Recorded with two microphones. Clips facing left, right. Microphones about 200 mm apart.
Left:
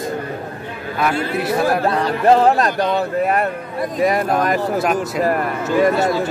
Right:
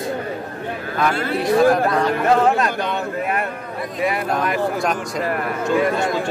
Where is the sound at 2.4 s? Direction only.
35° left (ahead or behind).